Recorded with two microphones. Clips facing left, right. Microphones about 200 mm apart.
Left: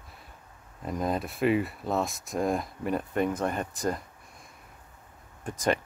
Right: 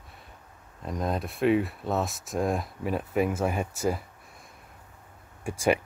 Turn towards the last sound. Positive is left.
turn(degrees=-10)  # may be behind; listen again after turning